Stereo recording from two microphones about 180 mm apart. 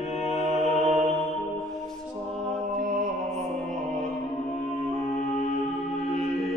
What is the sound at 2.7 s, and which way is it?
Mantra, 45° right (ahead or behind).